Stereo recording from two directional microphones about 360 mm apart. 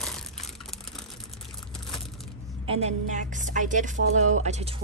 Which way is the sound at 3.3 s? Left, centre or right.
Right.